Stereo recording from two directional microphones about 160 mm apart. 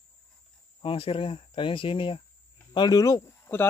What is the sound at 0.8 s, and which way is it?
Speech, 35° left (ahead or behind).